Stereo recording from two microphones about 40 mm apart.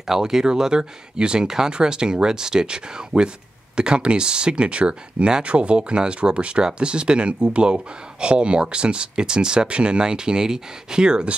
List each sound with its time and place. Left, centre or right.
0.0 s speech: centre